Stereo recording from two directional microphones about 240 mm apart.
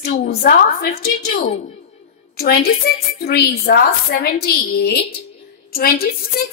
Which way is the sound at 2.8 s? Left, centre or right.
Left.